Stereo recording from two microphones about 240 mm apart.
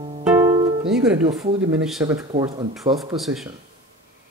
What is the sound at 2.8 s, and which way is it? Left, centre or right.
Speech, right.